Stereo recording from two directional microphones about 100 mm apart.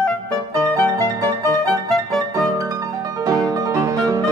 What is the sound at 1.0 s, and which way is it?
Music, 35° right (ahead or behind).